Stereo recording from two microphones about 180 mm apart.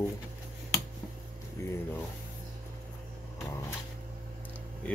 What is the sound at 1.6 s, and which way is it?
Music, 15° left (ahead or behind).